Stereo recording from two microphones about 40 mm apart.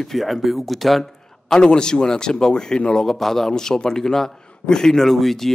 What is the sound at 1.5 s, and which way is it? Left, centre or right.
Speech, centre.